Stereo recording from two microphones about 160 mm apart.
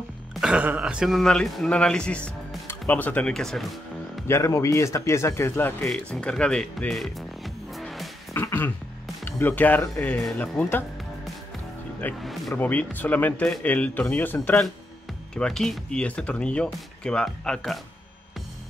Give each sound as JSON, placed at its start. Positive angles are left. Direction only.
{"t": 0.3, "sound": "speech", "side_deg": -5}
{"t": 4.3, "sound": "speech", "side_deg": 20}
{"t": 8.3, "sound": "music", "side_deg": 15}
{"t": 9.2, "sound": "speech", "side_deg": 10}
{"t": 12.2, "sound": "speech", "side_deg": 0}
{"t": 12.5, "sound": "speech", "side_deg": 10}